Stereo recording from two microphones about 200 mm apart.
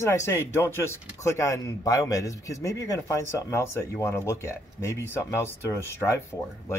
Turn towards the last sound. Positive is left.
turn(degrees=15)  # may be behind; listen again after turning